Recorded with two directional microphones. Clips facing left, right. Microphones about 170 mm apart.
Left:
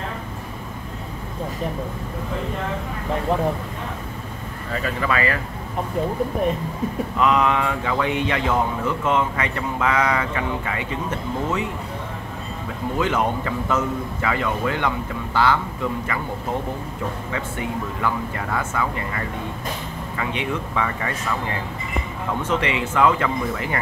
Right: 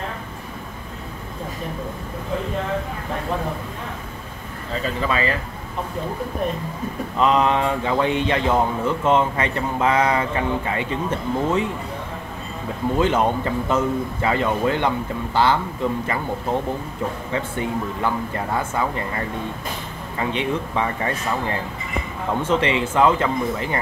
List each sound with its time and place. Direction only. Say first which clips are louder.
4.8 s speech: even; 25° right (ahead or behind)
7.2 s speech: right 1 dB; 30° right (ahead or behind)
12.9 s speech: right 3 dB; 25° right (ahead or behind)
17.3 s speech: right 3 dB; 30° right (ahead or behind)